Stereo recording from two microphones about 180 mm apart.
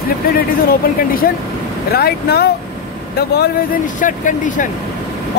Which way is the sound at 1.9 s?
60° left (ahead or behind).